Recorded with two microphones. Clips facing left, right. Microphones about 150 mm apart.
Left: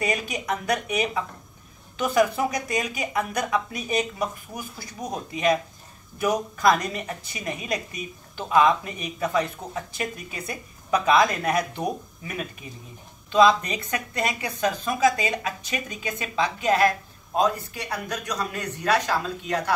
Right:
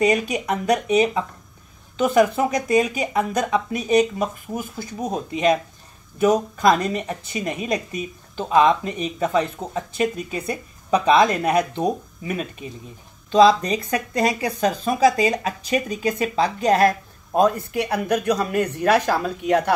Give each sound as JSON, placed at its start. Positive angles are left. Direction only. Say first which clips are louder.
{"t": 0.0, "sound": "a woman's voice", "louder": "right 8 dB", "side_deg": -30}
{"t": 13.3, "sound": "speech", "louder": "right 4 dB", "side_deg": -35}
{"t": 17.9, "sound": "speech", "louder": "right 9 dB", "side_deg": -65}